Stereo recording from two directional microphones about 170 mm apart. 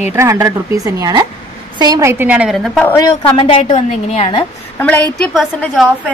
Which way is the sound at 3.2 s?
35° left (ahead or behind).